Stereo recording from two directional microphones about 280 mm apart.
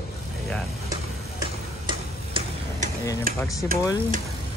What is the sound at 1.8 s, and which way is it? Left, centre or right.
Tick-tock, centre.